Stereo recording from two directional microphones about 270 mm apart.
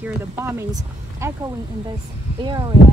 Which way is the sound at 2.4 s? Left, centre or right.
Centre.